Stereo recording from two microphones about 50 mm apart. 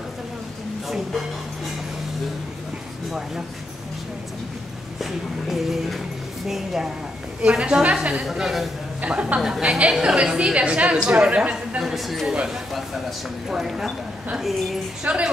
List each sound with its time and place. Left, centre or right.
0.8 s speech: centre
3.1 s a woman's voice: centre
5.5 s speech: centre
7.4 s a woman's voice: centre
8.2 s a woman's voice: centre
9.0 s a woman's voice: right
9.4 s a woman's voice: centre
11.8 s speech: centre
13.5 s a woman's voice: centre
15.0 s a woman's voice: right